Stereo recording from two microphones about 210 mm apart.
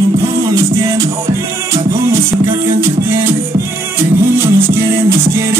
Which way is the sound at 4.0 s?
10° right (ahead or behind).